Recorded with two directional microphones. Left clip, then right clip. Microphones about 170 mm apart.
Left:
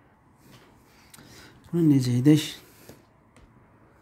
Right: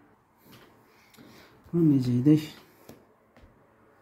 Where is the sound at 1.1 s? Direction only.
40° left (ahead or behind).